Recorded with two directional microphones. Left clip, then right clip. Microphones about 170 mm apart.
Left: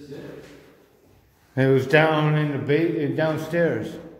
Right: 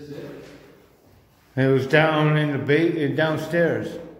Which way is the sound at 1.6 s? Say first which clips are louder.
Even; 10° left (ahead or behind).